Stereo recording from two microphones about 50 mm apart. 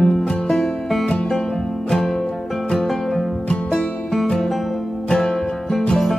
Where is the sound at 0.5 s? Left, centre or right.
Centre.